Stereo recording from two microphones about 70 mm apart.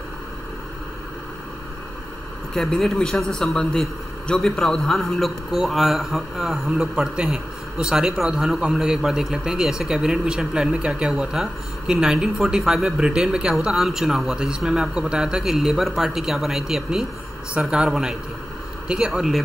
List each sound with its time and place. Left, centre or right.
2.5 s a man's voice: centre